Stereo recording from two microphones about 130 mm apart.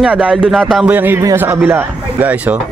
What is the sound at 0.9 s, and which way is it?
Speech, 15° right (ahead or behind).